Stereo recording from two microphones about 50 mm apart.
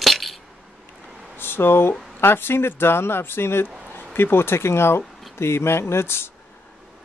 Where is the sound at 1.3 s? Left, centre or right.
Left.